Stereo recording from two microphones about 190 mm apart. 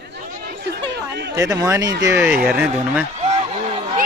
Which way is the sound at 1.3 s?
15° right (ahead or behind).